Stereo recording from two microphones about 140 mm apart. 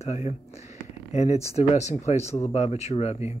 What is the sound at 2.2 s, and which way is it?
Speech, 20° left (ahead or behind).